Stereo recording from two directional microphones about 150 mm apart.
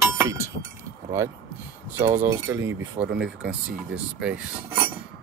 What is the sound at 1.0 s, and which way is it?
Speech, 20° right (ahead or behind).